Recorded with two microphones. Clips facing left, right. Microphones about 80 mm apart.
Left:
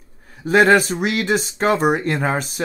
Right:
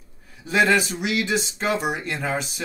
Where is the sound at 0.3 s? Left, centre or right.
Left.